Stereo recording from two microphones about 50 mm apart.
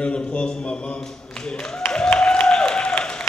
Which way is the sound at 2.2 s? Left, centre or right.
Centre.